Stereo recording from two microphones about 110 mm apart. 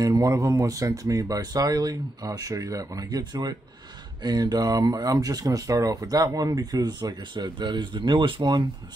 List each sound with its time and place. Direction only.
0.0 s speech: 30° right (ahead or behind)